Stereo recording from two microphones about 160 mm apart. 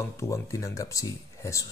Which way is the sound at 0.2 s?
20° left (ahead or behind).